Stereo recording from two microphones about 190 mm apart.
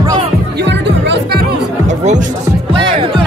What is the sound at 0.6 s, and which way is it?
Music, 65° right (ahead or behind).